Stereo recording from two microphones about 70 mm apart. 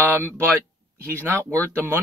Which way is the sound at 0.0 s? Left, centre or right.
Right.